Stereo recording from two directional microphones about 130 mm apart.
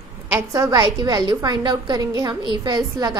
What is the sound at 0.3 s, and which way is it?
A woman's voice, 25° right (ahead or behind).